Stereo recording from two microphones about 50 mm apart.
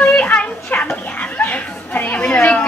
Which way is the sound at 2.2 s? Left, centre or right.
Left.